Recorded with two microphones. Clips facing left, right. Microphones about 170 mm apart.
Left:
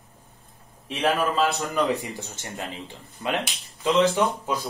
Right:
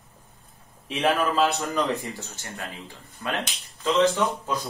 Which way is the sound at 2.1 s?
20° left (ahead or behind).